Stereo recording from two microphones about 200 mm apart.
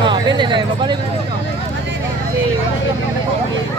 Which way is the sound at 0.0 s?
25° right (ahead or behind).